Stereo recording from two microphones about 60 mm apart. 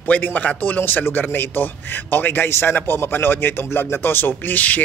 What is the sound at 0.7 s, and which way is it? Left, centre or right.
A man's voice, left.